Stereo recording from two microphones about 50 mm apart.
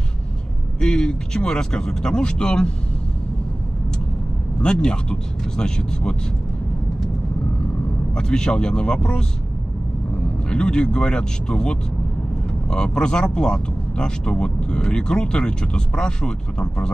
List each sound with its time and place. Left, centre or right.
0.7 s speech: centre
4.6 s speech: centre
8.1 s speech: centre
10.5 s speech: centre